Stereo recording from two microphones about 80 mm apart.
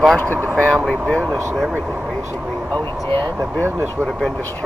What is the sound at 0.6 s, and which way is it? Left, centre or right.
Speech, centre.